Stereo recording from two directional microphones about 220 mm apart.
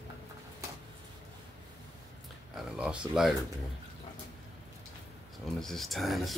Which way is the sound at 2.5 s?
5° right (ahead or behind).